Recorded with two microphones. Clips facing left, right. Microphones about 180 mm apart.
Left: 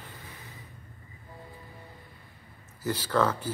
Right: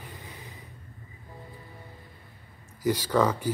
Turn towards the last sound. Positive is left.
turn(degrees=-10)  # may be behind; listen again after turning